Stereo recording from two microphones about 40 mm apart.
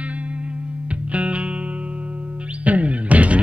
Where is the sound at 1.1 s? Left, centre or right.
Right.